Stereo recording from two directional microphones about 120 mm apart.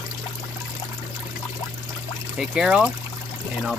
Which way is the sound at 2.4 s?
5° right (ahead or behind).